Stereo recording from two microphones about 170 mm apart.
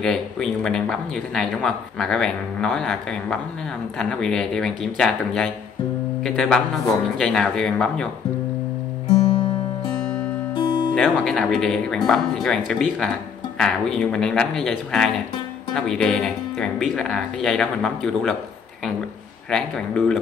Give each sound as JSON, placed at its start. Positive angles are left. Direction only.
{"t": 0.0, "sound": "speech", "side_deg": 5}
{"t": 10.5, "sound": "music", "side_deg": 25}
{"t": 11.0, "sound": "speech", "side_deg": 0}
{"t": 19.5, "sound": "speech", "side_deg": 5}